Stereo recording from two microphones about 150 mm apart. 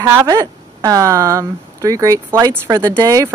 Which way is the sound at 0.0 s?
20° right (ahead or behind).